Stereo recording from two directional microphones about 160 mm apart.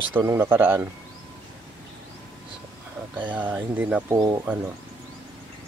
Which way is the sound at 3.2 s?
10° right (ahead or behind).